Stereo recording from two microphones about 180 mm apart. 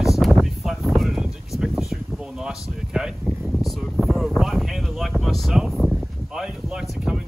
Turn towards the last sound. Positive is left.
turn(degrees=-5)  # may be behind; listen again after turning